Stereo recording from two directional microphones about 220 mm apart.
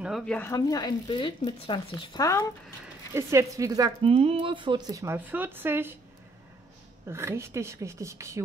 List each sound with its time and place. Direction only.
0.0 s speech: centre (ahead or behind)
3.2 s speech: 15° right (ahead or behind)
7.1 s speech: 10° right (ahead or behind)